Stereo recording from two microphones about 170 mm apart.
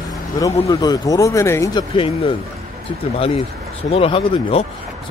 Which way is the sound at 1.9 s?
30° left (ahead or behind).